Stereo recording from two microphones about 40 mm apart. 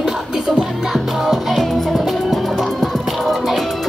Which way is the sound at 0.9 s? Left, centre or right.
Centre.